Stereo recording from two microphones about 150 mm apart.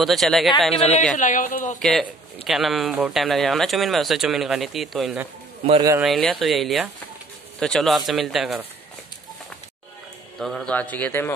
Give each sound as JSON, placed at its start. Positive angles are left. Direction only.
{"t": 0.0, "sound": "speech", "side_deg": 0}
{"t": 1.1, "sound": "speech", "side_deg": 60}
{"t": 1.8, "sound": "speech", "side_deg": 0}
{"t": 10.4, "sound": "a man's voice", "side_deg": 5}